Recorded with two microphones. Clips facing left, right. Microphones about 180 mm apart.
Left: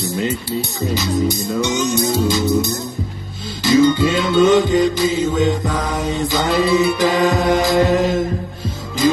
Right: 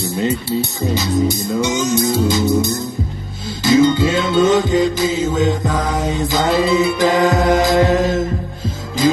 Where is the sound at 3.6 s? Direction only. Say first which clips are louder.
Right 1 dB; 25° right (ahead or behind).